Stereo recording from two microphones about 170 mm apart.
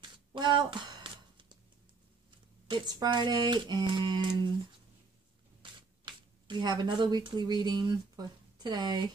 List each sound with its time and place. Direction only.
0.0 s a sound: 25° right (ahead or behind)
2.7 s speech: 25° right (ahead or behind)
5.6 s speech: 30° right (ahead or behind)